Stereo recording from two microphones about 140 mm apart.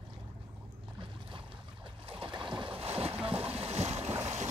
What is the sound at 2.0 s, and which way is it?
Boat, 40° right (ahead or behind).